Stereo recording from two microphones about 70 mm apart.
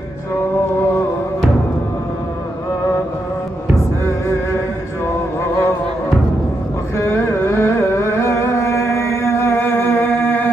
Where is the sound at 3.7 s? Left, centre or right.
Left.